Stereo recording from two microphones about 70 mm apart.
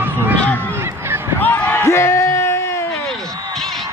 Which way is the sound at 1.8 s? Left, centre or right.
Left.